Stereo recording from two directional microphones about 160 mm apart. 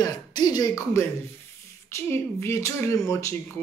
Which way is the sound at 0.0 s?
25° left (ahead or behind).